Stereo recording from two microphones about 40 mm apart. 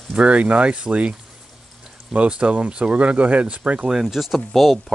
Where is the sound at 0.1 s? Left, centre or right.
Right.